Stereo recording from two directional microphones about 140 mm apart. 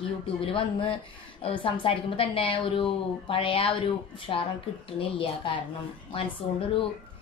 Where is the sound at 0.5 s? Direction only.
40° left (ahead or behind).